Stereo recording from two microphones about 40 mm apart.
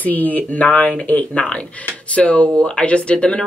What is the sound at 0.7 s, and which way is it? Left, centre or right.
Speech, left.